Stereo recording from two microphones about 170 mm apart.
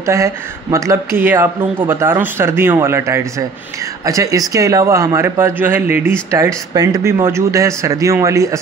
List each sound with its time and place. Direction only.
0.0 s speech: 20° right (ahead or behind)